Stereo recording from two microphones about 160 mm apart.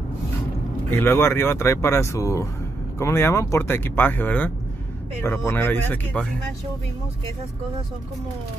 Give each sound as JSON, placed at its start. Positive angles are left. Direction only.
{"t": 0.9, "sound": "speech", "side_deg": 15}